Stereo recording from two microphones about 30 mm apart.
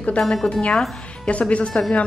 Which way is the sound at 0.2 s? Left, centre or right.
Centre.